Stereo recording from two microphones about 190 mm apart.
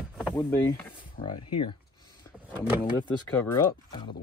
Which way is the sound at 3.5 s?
20° left (ahead or behind).